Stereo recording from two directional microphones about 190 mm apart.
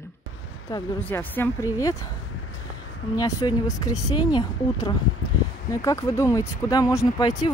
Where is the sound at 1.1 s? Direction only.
10° left (ahead or behind).